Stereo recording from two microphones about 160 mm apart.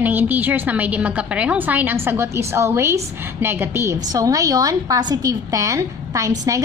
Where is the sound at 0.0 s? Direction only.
10° right (ahead or behind).